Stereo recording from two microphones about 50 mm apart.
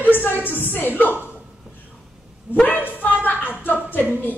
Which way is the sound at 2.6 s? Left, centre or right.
Left.